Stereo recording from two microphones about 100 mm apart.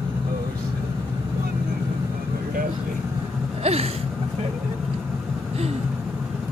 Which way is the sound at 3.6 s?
90° right.